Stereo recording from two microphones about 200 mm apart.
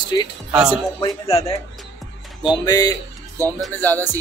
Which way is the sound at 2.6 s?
20° left (ahead or behind).